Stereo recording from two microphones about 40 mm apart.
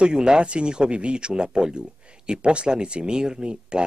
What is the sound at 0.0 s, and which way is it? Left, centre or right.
Speech, right.